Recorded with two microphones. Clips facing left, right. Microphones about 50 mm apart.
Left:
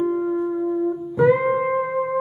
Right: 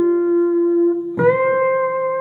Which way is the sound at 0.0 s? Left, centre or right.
Centre.